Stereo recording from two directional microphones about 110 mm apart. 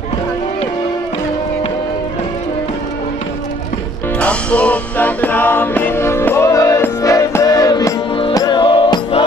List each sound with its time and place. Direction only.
4.2 s music: 10° left (ahead or behind); by 9.2 s 45° left (ahead or behind)